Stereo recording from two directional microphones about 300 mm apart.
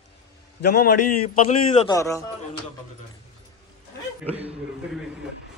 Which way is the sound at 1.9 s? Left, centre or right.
Centre.